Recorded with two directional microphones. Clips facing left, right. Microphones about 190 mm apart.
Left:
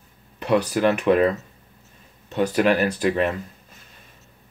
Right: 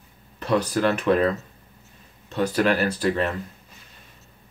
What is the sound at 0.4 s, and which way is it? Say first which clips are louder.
Speech: left 2 dB; 15° left (ahead or behind).